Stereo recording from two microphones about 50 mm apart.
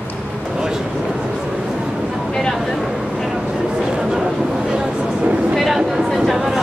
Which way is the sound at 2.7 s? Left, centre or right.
Centre.